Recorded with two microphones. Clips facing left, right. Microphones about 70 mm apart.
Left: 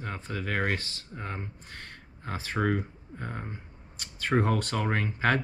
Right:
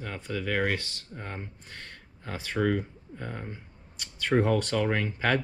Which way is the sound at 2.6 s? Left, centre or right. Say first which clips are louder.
Right 2 dB; centre.